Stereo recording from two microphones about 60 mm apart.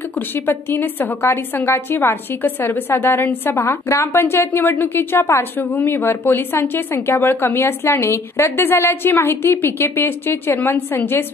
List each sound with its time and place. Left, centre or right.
0.5 s a woman's voice: left
5.2 s a woman's voice: left
5.9 s a woman's voice: left